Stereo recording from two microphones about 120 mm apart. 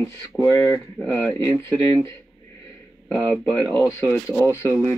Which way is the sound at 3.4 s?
10° left (ahead or behind).